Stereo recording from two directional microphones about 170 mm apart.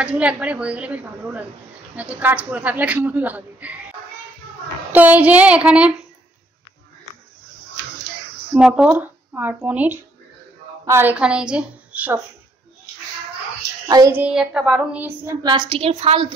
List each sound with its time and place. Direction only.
0.0 s a woman's voice: 5° right (ahead or behind)
4.9 s a woman's voice: 10° right (ahead or behind)
8.5 s a woman's voice: 5° right (ahead or behind)
13.8 s child singing: 20° right (ahead or behind)
14.1 s a woman's voice: 5° right (ahead or behind)
15.4 s a woman's voice: 25° right (ahead or behind)